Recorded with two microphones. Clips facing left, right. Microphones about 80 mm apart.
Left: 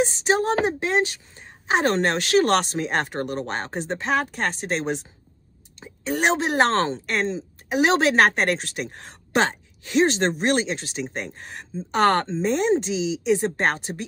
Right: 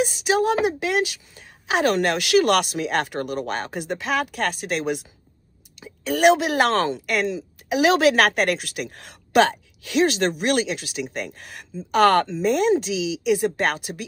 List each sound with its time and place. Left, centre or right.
0.0 s a woman's voice: left